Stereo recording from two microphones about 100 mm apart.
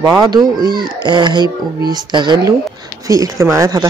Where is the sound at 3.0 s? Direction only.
35° right (ahead or behind).